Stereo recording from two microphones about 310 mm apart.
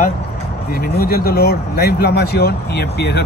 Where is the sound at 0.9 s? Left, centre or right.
Left.